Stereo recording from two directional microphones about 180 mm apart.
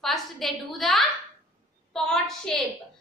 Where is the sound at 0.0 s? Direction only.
Centre (ahead or behind).